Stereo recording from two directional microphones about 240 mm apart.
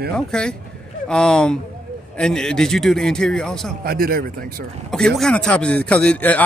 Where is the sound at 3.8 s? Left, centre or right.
Right.